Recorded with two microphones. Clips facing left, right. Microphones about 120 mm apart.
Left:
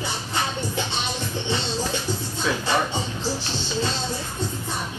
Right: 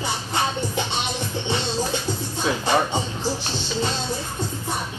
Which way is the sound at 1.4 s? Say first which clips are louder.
Right 2 dB; 15° right (ahead or behind).